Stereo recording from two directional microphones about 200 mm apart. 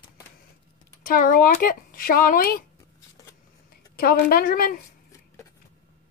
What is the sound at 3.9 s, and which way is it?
Speech, 50° left (ahead or behind).